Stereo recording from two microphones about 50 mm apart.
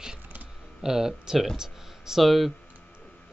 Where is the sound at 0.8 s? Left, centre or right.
Centre.